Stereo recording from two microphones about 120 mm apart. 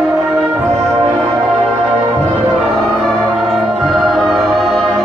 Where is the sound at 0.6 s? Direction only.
25° right (ahead or behind).